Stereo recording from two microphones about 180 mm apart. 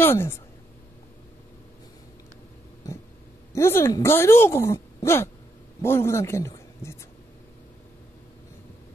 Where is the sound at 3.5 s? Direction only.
15° left (ahead or behind).